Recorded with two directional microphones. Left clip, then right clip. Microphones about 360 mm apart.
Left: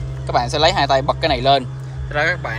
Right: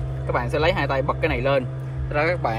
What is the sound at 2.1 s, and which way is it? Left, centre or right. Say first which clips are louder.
Speech: left 3 dB; centre.